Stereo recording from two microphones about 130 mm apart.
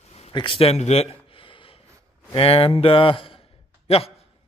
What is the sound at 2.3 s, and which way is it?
A man's voice, 45° left (ahead or behind).